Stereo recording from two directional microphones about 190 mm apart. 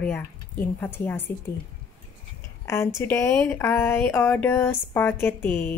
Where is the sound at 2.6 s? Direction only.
15° left (ahead or behind).